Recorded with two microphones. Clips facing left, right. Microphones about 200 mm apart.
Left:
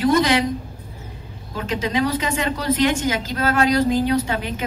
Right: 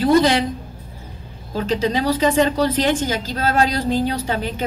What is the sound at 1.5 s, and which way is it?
A woman's voice, 30° right (ahead or behind).